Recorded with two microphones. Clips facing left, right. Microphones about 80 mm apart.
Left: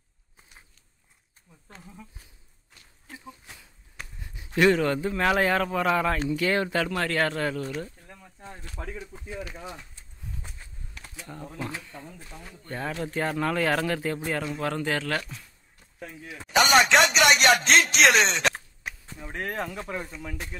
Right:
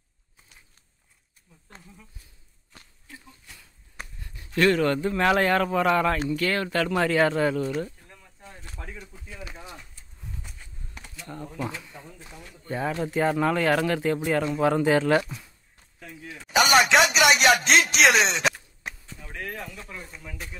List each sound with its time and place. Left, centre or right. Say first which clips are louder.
3.1 s a sound: left 4 dB; left
4.6 s speech: even; centre
6.2 s speech: left 1 dB; centre
6.9 s speech: right 4 dB; centre
8.1 s a sound: left 4 dB; left
8.8 s speech: left 4 dB; left
11.2 s speech: right 3 dB; centre
11.8 s speech: left 1 dB; centre
14.5 s speech: right 7 dB; centre
16.4 s speech: even; centre
18.8 s chop: right 1 dB; centre
19.5 s speech: left 5 dB; left
19.8 s speech: left 7 dB; left